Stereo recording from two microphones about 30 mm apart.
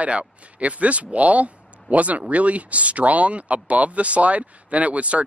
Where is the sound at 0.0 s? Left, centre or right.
Right.